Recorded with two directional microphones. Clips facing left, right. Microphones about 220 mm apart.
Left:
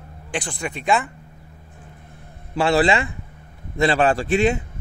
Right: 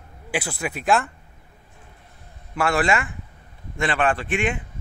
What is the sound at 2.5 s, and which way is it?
A man's voice, 35° left (ahead or behind).